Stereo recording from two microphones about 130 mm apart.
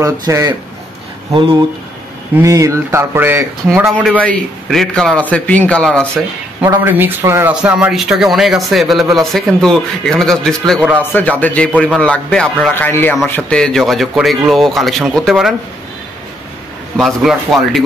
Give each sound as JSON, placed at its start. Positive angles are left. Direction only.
{"t": 0.0, "sound": "a sound", "side_deg": -25}
{"t": 1.3, "sound": "speech", "side_deg": -40}
{"t": 2.4, "sound": "a sound", "side_deg": -25}
{"t": 4.2, "sound": "a man's voice", "side_deg": 5}
{"t": 6.6, "sound": "a man's voice", "side_deg": -20}
{"t": 16.9, "sound": "a man's voice", "side_deg": 0}